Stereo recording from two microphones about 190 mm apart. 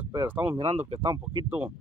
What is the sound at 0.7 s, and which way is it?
Speech, 35° right (ahead or behind).